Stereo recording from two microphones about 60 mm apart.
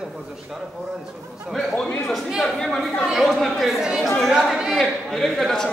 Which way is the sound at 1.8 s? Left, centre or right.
Left.